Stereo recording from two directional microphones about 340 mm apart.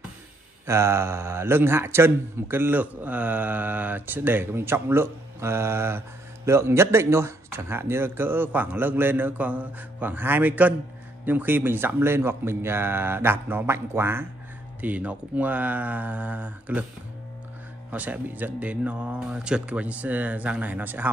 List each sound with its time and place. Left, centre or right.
0.7 s speech: centre
17.9 s speech: centre